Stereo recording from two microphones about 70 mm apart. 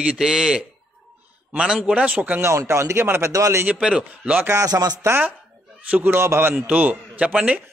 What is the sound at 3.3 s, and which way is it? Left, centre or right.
Speech, right.